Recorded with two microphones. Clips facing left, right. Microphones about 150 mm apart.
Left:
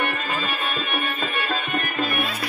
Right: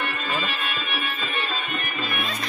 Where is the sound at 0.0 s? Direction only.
50° left (ahead or behind).